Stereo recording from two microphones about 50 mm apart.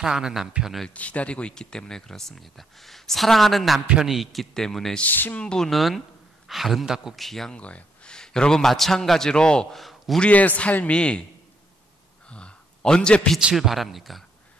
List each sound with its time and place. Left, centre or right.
0.0 s a man's voice: centre
0.8 s a man's voice: left; by 4.9 s centre
5.0 s speech: left
5.4 s speech: centre
5.7 s a man's voice: centre
7.2 s a man's voice: centre
7.5 s a man's voice: left
9.8 s a sound: centre
10.3 s speech: left
10.9 s a man's voice: left
12.3 s a sound: left
13.6 s a man's voice: centre